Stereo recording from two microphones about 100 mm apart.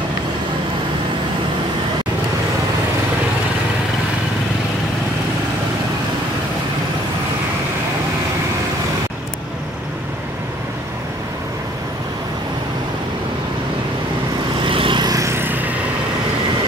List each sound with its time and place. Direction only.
14.6 s vehicle: 60° right (ahead or behind)
15.0 s vehicle: 30° right (ahead or behind)